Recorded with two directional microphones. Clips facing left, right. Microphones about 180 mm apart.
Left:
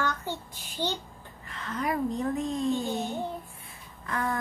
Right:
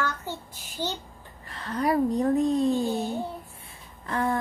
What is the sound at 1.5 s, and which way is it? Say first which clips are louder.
A child's voice: right 5 dB; 35° right (ahead or behind).